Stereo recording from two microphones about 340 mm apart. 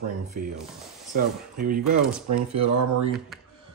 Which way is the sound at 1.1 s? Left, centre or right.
Right.